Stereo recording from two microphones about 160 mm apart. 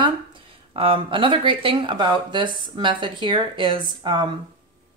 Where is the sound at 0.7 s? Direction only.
35° right (ahead or behind).